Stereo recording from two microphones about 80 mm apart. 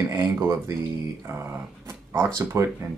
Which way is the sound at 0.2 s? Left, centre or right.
Right.